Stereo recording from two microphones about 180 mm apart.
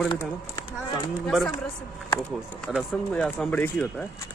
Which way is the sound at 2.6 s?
5° left (ahead or behind).